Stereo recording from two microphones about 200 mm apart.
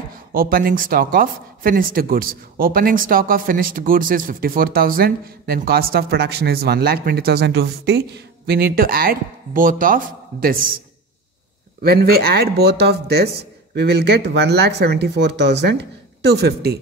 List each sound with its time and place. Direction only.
0.3 s speech: 45° right (ahead or behind)
11.8 s speech: 50° right (ahead or behind)